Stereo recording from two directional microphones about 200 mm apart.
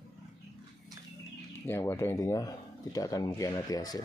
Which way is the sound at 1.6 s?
10° left (ahead or behind).